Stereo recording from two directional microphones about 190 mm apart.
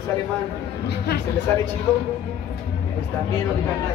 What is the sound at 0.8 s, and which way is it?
Speech, 60° left (ahead or behind).